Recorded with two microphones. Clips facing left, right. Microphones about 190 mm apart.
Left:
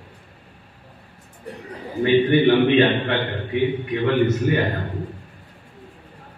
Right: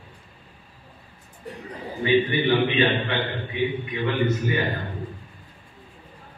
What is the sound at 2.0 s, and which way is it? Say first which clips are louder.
A man's voice: left 5 dB; 60° left (ahead or behind).